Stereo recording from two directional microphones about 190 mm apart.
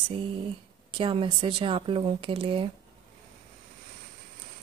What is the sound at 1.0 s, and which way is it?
Speech, 25° right (ahead or behind).